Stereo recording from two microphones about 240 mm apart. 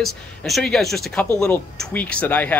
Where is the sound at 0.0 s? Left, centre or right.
Centre.